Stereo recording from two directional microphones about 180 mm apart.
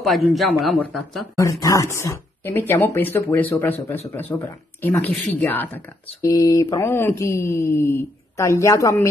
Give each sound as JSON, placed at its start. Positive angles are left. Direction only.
{"t": 0.0, "sound": "speech", "side_deg": 0}
{"t": 1.3, "sound": "speech", "side_deg": 15}
{"t": 6.2, "sound": "speech", "side_deg": 20}